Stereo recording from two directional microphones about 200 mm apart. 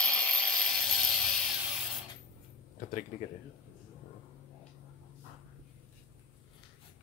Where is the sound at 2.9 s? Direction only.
40° left (ahead or behind).